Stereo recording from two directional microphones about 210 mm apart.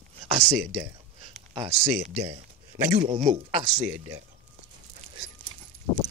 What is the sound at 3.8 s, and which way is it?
Speech, 10° right (ahead or behind).